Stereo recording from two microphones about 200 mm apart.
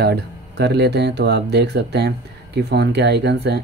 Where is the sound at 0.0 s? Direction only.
55° right (ahead or behind).